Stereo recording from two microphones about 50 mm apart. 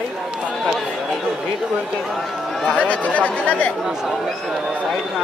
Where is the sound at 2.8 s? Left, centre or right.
Left.